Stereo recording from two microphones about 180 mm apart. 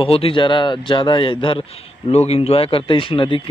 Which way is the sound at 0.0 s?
30° left (ahead or behind).